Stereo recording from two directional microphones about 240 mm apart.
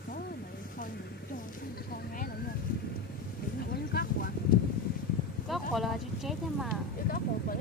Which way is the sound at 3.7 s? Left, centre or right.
Left.